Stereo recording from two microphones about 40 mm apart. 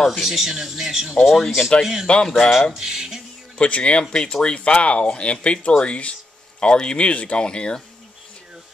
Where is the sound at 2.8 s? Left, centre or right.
Centre.